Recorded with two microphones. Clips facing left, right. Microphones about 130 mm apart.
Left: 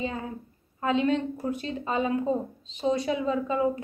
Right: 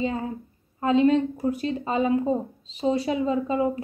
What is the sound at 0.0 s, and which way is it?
A woman's voice, 30° right (ahead or behind).